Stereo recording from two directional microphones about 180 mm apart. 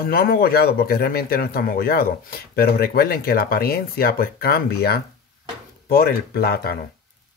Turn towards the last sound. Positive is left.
turn(degrees=60)  # may be behind; listen again after turning